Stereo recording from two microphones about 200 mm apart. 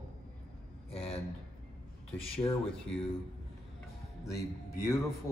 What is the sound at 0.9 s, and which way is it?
Speech, 30° left (ahead or behind).